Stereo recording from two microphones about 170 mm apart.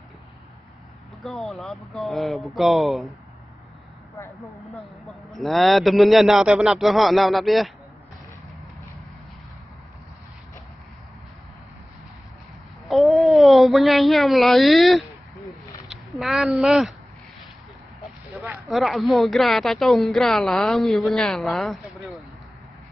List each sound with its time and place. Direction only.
1.2 s a woman's voice: centre (ahead or behind)
4.3 s a woman's voice: centre (ahead or behind)
12.8 s a sound: centre (ahead or behind)
15.9 s speech: centre (ahead or behind)
18.7 s a woman's voice: centre (ahead or behind)